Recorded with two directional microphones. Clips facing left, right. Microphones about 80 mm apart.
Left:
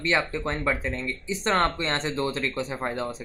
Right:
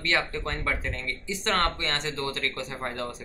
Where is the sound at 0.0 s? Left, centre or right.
Left.